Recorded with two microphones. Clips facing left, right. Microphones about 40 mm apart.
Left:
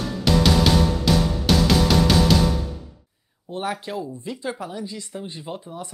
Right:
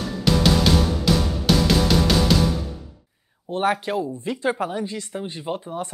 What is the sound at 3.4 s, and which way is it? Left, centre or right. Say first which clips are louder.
Speech: right 6 dB; right.